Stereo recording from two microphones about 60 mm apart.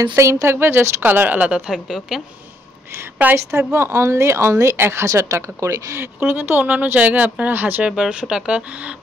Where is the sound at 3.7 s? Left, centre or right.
Right.